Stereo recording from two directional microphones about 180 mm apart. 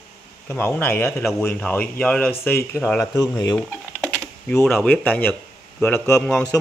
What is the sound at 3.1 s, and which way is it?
Speech, 20° left (ahead or behind).